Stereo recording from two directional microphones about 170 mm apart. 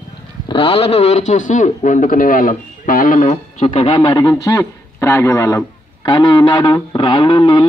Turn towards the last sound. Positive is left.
turn(degrees=30)  # may be behind; listen again after turning